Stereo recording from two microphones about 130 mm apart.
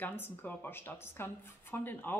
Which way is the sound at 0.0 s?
15° left (ahead or behind).